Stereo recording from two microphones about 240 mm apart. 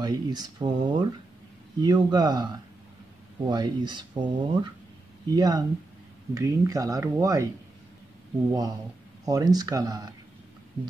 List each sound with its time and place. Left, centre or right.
0.0 s speech: centre
8.5 s speech: centre